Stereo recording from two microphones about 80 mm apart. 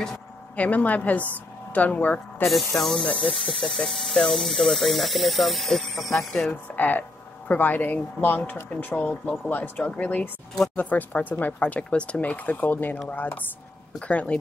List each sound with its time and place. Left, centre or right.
0.6 s speech: centre
2.8 s speech: centre
6.5 s speech: left